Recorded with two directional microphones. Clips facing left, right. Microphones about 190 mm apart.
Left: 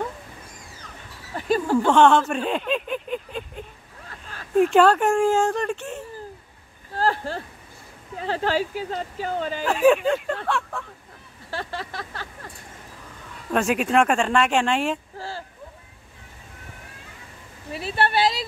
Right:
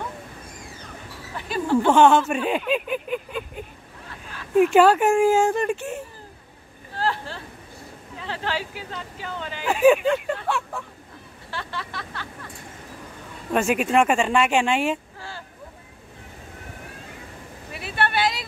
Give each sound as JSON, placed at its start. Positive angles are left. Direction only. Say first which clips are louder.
{"t": 1.3, "sound": "a sound", "louder": "left 1 dB", "side_deg": 45}
{"t": 1.9, "sound": "speech", "louder": "even", "side_deg": -5}
{"t": 7.0, "sound": "a sound", "louder": "left 3 dB", "side_deg": 45}
{"t": 8.2, "sound": "speech", "louder": "left 6 dB", "side_deg": 40}
{"t": 9.7, "sound": "speech", "louder": "right 1 dB", "side_deg": -5}
{"t": 11.5, "sound": "vehicle", "louder": "left 2 dB", "side_deg": 40}
{"t": 13.5, "sound": "speech", "louder": "even", "side_deg": 0}
{"t": 15.1, "sound": "a sound", "louder": "left 5 dB", "side_deg": 35}
{"t": 17.7, "sound": "speech", "louder": "left 2 dB", "side_deg": 35}